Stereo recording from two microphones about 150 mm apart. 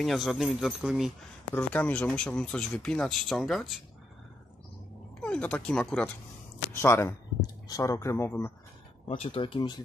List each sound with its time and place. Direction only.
0.0 s speech: centre (ahead or behind)
1.5 s speech: 10° left (ahead or behind)
5.2 s speech: 5° left (ahead or behind)
6.7 s speech: 15° left (ahead or behind)
9.1 s speech: 40° left (ahead or behind)